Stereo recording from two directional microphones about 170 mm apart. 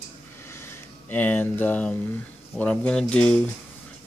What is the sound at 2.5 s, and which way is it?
Speech, 5° left (ahead or behind).